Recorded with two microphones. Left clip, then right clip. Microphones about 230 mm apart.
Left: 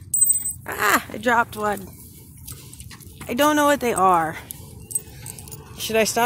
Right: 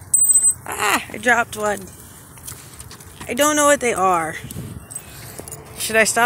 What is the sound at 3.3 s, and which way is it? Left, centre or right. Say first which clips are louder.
Speech: right 2 dB; centre.